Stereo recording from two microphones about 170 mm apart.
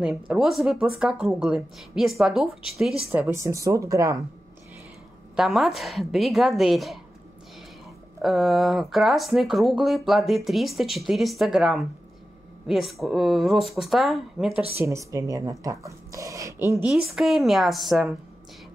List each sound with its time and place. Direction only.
0.0 s speech: 5° right (ahead or behind)
3.1 s speech: 15° right (ahead or behind)
5.3 s speech: centre (ahead or behind)
8.2 s speech: centre (ahead or behind)
14.8 s speech: 15° right (ahead or behind)
16.9 s speech: centre (ahead or behind)